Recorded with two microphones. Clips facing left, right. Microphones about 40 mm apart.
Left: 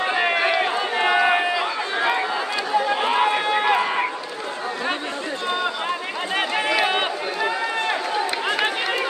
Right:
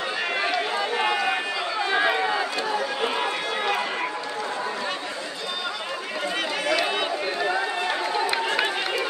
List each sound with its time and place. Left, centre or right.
0.0 s run: left
2.8 s run: left
6.3 s run: left